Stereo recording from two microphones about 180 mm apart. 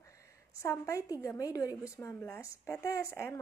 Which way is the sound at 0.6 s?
15° left (ahead or behind).